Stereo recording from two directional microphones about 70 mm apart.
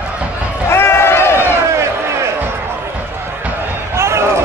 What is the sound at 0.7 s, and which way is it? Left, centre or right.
Run, left.